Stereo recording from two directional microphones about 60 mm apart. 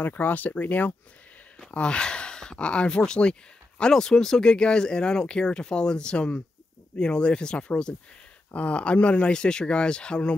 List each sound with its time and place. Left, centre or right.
0.0 s speech: left
1.7 s speech: centre